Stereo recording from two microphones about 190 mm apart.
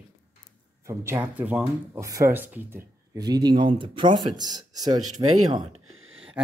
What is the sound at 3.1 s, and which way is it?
Speech, 20° right (ahead or behind).